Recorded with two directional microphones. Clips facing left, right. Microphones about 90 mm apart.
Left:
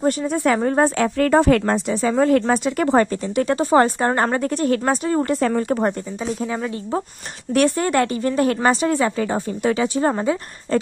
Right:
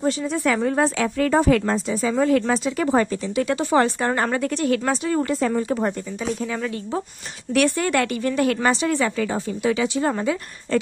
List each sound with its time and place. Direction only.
0.0 s a woman's voice: 40° left (ahead or behind)
5.3 s speech: 55° left (ahead or behind)
7.5 s a woman's voice: 35° left (ahead or behind)